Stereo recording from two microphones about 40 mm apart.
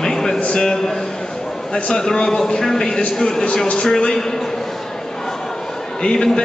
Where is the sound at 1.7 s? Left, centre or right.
Centre.